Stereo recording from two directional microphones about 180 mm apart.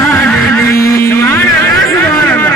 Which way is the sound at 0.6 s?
55° left (ahead or behind).